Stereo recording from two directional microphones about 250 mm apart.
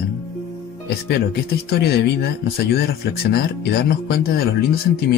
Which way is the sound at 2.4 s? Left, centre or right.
Left.